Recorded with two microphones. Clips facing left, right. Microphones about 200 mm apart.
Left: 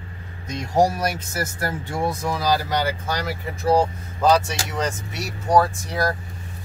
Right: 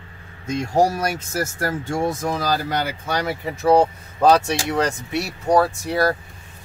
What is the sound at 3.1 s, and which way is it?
Speech, 60° right (ahead or behind).